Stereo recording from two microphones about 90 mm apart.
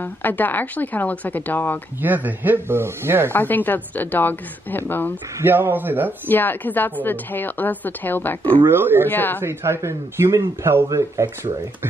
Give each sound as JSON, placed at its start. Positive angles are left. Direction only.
{"t": 0.0, "sound": "a woman's voice", "side_deg": 20}
{"t": 2.0, "sound": "speech", "side_deg": -20}
{"t": 3.3, "sound": "a woman's voice", "side_deg": 20}
{"t": 5.4, "sound": "speech", "side_deg": -25}
{"t": 6.2, "sound": "a woman's voice", "side_deg": 20}
{"t": 8.6, "sound": "speech", "side_deg": -25}
{"t": 9.1, "sound": "a woman's voice", "side_deg": 20}
{"t": 9.4, "sound": "a man's voice", "side_deg": -30}